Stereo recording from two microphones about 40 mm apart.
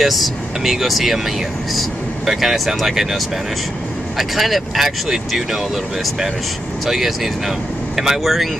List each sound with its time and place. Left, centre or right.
0.0 s speech: centre
4.2 s speech: centre
6.9 s speech: centre